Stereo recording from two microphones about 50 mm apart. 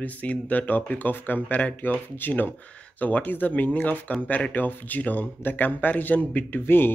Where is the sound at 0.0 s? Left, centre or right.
Left.